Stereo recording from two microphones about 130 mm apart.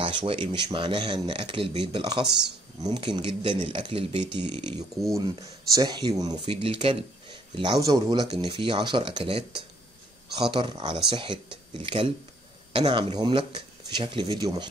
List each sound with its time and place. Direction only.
0.0 s speech: 40° right (ahead or behind)
6.4 s speech: 45° right (ahead or behind)